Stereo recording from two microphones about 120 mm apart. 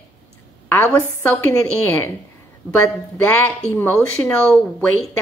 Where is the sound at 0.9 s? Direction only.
20° left (ahead or behind).